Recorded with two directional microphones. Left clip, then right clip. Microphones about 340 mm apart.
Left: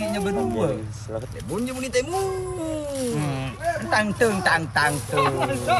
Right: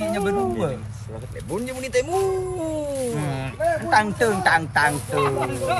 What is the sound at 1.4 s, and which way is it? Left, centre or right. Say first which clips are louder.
Speech: right 4 dB; centre.